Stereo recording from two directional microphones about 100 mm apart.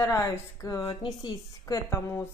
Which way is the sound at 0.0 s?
25° left (ahead or behind).